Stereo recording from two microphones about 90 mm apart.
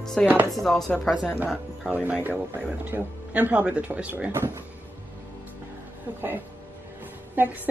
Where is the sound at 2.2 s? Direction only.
20° right (ahead or behind).